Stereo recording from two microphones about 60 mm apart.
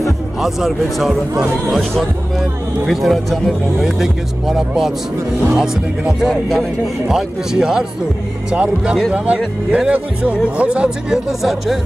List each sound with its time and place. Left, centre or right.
0.4 s speech: centre